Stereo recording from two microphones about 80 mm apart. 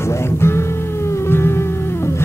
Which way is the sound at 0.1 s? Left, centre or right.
Left.